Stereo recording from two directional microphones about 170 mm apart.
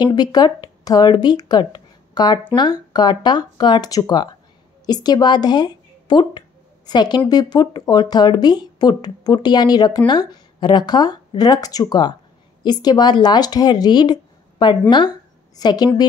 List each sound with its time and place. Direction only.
0.0 s speech: 25° left (ahead or behind)